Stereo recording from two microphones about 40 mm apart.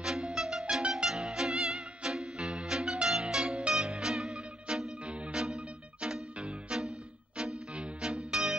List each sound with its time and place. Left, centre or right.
0.0 s music: centre
0.8 s music: right
1.1 s music: centre
8.0 s music: centre